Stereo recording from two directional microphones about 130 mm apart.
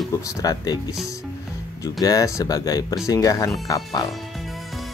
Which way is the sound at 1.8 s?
25° left (ahead or behind).